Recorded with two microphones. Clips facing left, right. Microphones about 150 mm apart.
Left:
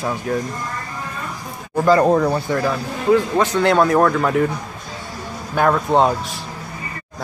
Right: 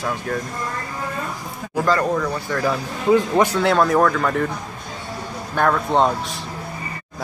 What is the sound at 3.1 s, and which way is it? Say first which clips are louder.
Speech: even; 15° right (ahead or behind).